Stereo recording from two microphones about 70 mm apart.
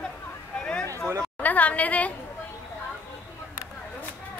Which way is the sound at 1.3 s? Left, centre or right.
Left.